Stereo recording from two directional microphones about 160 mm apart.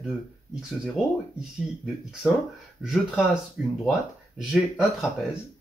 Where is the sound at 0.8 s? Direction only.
Centre (ahead or behind).